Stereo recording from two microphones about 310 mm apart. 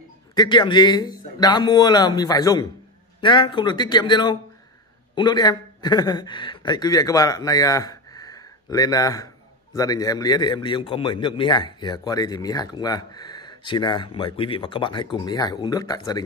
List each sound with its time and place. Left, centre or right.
0.4 s a man's voice: centre